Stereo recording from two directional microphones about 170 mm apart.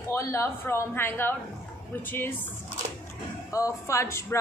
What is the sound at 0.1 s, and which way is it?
Speech, 15° left (ahead or behind).